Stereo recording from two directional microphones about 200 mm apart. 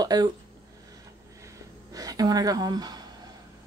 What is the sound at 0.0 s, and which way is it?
Speech, 20° right (ahead or behind).